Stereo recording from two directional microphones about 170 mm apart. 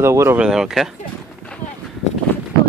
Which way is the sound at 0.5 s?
5° right (ahead or behind).